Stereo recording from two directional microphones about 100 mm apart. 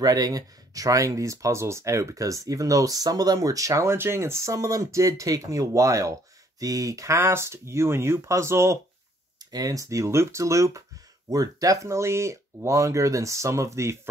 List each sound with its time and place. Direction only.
0.0 s speech: 40° right (ahead or behind)
9.4 s speech: 40° right (ahead or behind)